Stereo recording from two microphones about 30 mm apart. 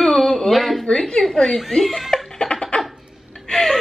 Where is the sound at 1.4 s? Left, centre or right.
Centre.